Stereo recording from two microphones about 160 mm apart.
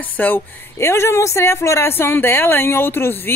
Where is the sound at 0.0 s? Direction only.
10° left (ahead or behind).